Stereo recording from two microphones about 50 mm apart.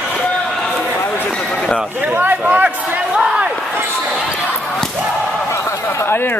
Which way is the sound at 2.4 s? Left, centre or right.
Right.